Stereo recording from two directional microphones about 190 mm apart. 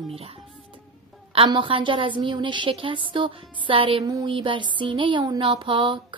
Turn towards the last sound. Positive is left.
turn(degrees=-25)  # may be behind; listen again after turning